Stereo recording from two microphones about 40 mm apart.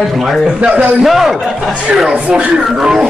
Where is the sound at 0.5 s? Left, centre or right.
Right.